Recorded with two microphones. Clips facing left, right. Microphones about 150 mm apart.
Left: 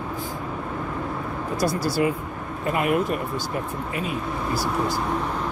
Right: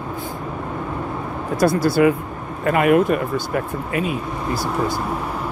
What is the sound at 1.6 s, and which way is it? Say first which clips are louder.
Speech: right 7 dB; 55° right (ahead or behind).